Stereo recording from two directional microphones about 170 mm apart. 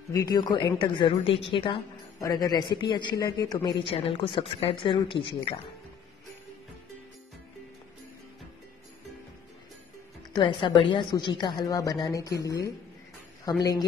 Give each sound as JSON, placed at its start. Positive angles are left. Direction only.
{"t": 0.1, "sound": "a woman's voice", "side_deg": 20}
{"t": 10.3, "sound": "a woman's voice", "side_deg": 30}